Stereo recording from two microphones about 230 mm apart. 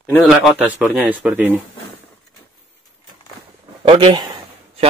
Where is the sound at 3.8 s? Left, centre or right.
Right.